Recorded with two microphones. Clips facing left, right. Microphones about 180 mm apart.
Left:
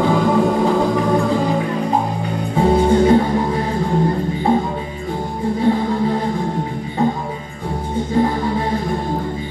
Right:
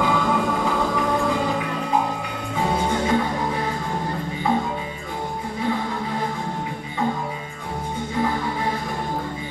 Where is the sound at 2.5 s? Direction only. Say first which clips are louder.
Left 9 dB; 35° left (ahead or behind).